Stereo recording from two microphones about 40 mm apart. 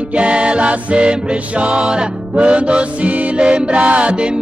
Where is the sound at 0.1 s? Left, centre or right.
Right.